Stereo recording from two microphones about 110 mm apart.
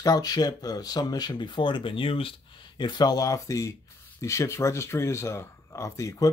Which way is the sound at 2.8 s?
40° left (ahead or behind).